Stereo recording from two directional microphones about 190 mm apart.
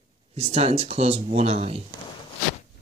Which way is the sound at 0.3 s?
30° right (ahead or behind).